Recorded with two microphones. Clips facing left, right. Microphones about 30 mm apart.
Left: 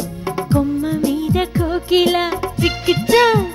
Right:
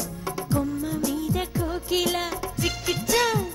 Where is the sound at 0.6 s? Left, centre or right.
Left.